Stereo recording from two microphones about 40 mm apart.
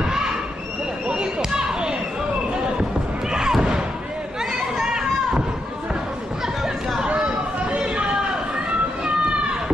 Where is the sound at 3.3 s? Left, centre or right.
Centre.